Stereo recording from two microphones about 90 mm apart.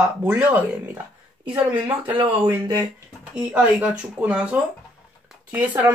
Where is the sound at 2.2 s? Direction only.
65° right (ahead or behind).